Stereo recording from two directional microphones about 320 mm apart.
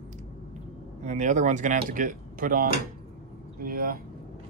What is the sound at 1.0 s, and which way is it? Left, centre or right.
Speech, right.